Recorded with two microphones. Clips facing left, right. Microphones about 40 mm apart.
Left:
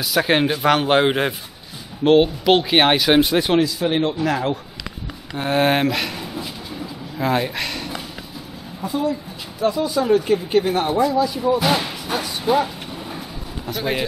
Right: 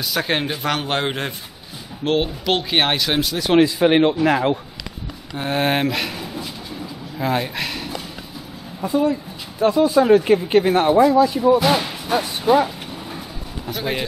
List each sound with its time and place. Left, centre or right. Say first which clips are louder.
0.0 s speech: left 4 dB; centre
3.2 s speech: left 6 dB; left
3.5 s speech: right 4 dB; right
5.0 s a sound: left 1 dB; centre
9.8 s speech: right 4 dB; right
10.6 s speech: right 4 dB; centre
11.3 s a sound: right 3 dB; centre
13.7 s speech: left 1 dB; centre